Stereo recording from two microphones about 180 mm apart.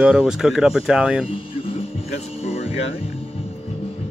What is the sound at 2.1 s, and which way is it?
Music, 35° left (ahead or behind).